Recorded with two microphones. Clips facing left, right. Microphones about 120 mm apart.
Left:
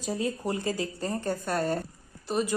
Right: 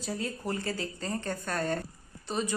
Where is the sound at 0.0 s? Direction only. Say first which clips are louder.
Left 4 dB; 15° left (ahead or behind).